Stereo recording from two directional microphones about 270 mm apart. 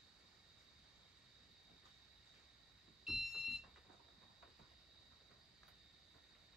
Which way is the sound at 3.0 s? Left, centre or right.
Centre.